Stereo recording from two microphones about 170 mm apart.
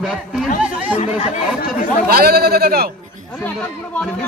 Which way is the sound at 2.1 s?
65° right (ahead or behind).